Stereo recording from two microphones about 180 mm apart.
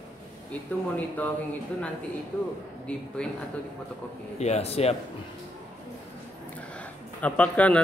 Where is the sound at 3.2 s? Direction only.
5° left (ahead or behind).